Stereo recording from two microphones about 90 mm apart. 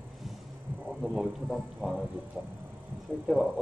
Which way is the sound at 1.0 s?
Centre (ahead or behind).